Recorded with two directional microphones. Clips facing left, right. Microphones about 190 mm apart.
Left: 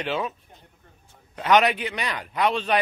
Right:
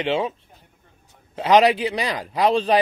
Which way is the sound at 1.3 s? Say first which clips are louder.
Right 4 dB; 30° right (ahead or behind).